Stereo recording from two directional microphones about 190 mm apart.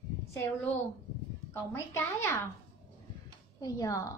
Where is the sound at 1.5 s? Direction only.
15° left (ahead or behind).